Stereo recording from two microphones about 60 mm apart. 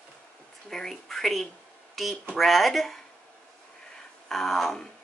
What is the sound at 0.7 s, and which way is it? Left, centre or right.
A woman's voice, centre.